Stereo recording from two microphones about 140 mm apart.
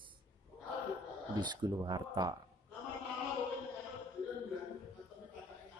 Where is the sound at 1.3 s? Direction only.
30° right (ahead or behind).